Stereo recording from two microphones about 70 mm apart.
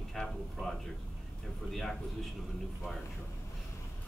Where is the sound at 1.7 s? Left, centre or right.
Centre.